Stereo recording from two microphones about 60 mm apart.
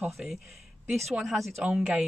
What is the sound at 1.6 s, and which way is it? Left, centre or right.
Speech, centre.